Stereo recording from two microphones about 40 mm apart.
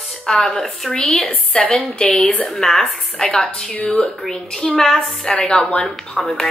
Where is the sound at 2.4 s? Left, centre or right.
Centre.